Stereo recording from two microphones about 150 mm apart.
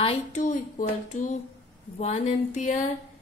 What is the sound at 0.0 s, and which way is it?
Speech, 40° left (ahead or behind).